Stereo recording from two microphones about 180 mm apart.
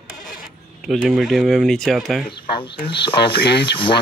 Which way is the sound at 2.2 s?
25° left (ahead or behind).